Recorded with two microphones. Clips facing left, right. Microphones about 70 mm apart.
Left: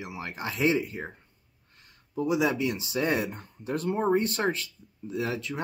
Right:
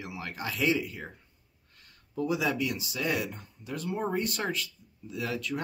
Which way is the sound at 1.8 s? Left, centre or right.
Left.